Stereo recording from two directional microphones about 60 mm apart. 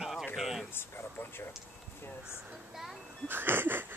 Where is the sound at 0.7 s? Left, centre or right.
Left.